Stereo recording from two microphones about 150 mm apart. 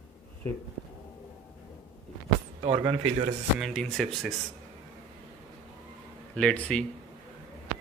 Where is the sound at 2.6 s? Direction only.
35° right (ahead or behind).